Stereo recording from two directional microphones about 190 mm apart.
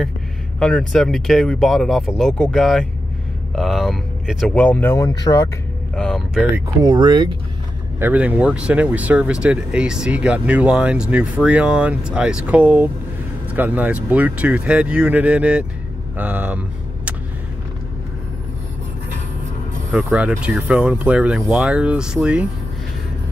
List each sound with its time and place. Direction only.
0.6 s speech: 5° left (ahead or behind)
5.9 s speech: centre (ahead or behind)
6.5 s speech: 20° right (ahead or behind)
8.0 s speech: 10° right (ahead or behind)
19.9 s speech: 5° right (ahead or behind)